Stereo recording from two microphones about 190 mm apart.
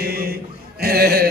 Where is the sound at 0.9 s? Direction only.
55° right (ahead or behind).